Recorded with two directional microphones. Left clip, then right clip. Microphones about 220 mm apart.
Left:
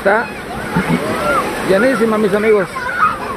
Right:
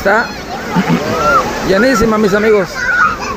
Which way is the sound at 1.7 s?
10° right (ahead or behind).